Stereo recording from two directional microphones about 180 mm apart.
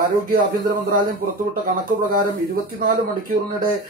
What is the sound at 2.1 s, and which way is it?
Speech, 50° right (ahead or behind).